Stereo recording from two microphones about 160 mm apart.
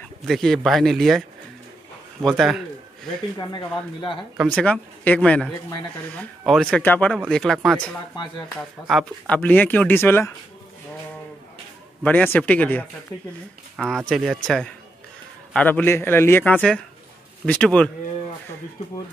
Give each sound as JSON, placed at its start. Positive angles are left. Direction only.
{"t": 0.3, "sound": "speech", "side_deg": 0}
{"t": 2.2, "sound": "speech", "side_deg": 0}
{"t": 3.3, "sound": "speech", "side_deg": 30}
{"t": 4.5, "sound": "a man's voice", "side_deg": 10}
{"t": 8.8, "sound": "speech", "side_deg": 0}
{"t": 9.4, "sound": "a man's voice", "side_deg": 10}
{"t": 12.0, "sound": "a man's voice", "side_deg": 10}